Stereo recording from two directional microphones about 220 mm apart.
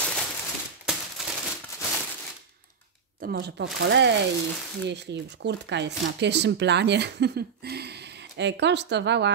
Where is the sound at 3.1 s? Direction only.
45° right (ahead or behind).